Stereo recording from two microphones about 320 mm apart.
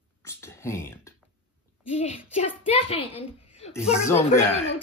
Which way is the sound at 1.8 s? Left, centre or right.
Centre.